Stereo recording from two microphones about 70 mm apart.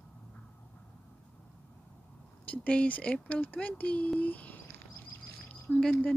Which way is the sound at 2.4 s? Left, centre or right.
Left.